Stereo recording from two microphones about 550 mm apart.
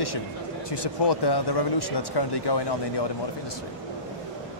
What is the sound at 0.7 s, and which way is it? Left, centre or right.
Speech, left.